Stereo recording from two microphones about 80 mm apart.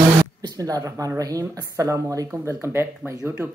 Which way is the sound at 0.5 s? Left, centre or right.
Right.